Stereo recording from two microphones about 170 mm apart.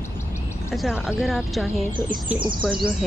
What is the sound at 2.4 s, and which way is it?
Speech, 30° right (ahead or behind).